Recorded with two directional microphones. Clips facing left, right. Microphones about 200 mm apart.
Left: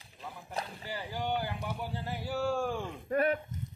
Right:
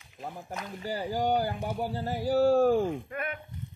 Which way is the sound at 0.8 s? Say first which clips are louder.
Right 9 dB; 40° right (ahead or behind).